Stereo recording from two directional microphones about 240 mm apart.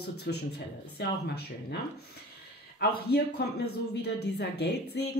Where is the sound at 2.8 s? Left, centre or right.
Left.